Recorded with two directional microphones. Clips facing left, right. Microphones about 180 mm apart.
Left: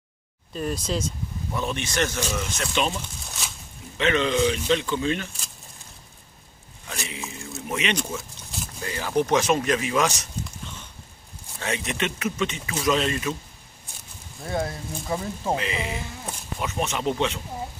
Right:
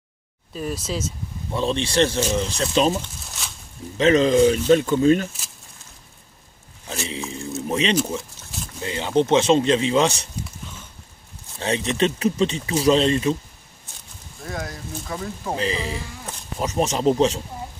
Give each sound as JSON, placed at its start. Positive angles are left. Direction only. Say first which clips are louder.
{"t": 0.5, "sound": "speech", "louder": "even", "side_deg": -5}
{"t": 1.5, "sound": "speech", "louder": "right 6 dB", "side_deg": -30}
{"t": 3.3, "sound": "a sound", "louder": "even", "side_deg": 0}
{"t": 4.0, "sound": "speech", "louder": "right 7 dB", "side_deg": -40}
{"t": 7.1, "sound": "a sound", "louder": "right 6 dB", "side_deg": -30}
{"t": 7.6, "sound": "speech", "louder": "right 6 dB", "side_deg": -30}
{"t": 11.6, "sound": "speech", "louder": "right 7 dB", "side_deg": -30}
{"t": 14.4, "sound": "speech", "louder": "left 3 dB", "side_deg": 30}
{"t": 15.5, "sound": "speech", "louder": "right 3 dB", "side_deg": -30}